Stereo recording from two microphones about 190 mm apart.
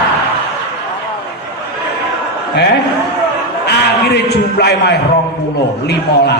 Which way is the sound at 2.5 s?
60° left (ahead or behind).